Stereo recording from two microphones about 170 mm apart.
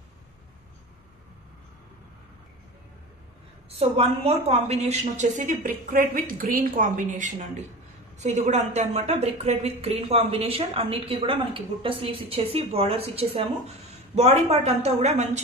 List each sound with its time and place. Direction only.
3.8 s a woman's voice: 35° right (ahead or behind)